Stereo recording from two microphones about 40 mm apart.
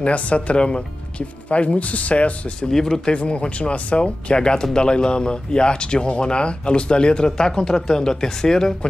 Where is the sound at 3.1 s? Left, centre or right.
Left.